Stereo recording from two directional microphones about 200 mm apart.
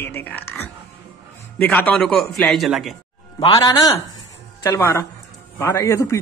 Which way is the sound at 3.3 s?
20° left (ahead or behind).